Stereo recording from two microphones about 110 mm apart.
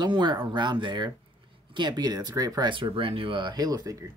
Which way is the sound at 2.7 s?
50° right (ahead or behind).